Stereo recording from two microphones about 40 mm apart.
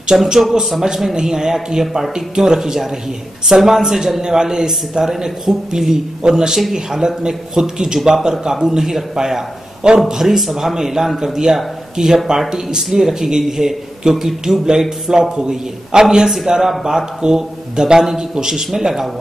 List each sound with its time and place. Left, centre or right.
0.2 s a man's voice: centre